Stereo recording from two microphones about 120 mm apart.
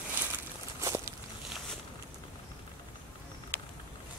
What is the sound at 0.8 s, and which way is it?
Walk, 25° right (ahead or behind).